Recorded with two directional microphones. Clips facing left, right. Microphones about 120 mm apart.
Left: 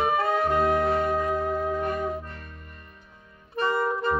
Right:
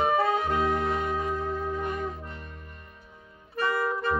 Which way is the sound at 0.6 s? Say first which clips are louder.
Left 4 dB; 65° left (ahead or behind).